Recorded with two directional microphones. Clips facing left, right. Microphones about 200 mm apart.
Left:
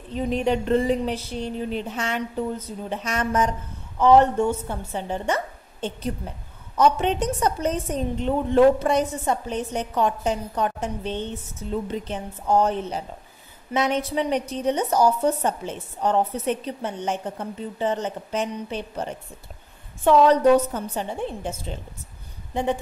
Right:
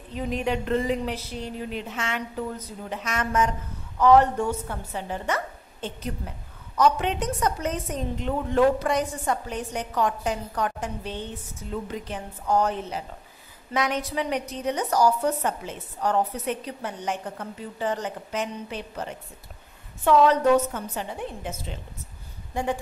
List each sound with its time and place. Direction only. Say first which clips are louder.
0.1 s a woman's voice: left 4 dB; 30° left (ahead or behind)